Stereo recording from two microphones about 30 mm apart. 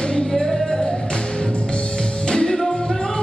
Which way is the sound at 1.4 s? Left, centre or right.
Left.